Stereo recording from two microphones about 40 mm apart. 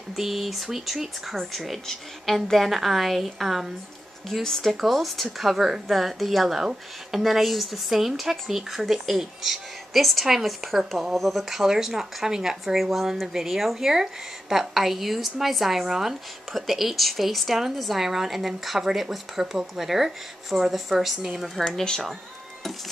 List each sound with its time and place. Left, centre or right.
0.1 s a woman's voice: centre
4.3 s a woman's voice: centre
21.6 s speech: centre